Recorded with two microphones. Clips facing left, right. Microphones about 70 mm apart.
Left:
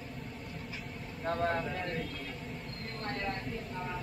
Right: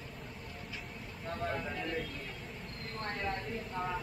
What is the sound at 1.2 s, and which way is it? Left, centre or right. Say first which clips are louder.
Vehicle: left 6 dB; left.